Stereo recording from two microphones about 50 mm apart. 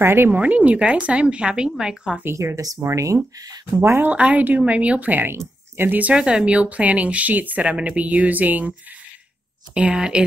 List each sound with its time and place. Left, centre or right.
0.0 s a woman's voice: right
0.4 s a woman's voice: right; by 2.1 s centre
2.3 s speech: right
4.1 s a woman's voice: right
5.3 s a sound: right
5.9 s speech: right
6.1 s a woman's voice: centre; by 8.7 s right
9.8 s speech: centre